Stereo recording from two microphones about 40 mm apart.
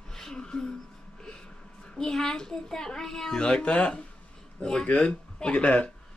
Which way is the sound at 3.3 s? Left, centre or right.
Left.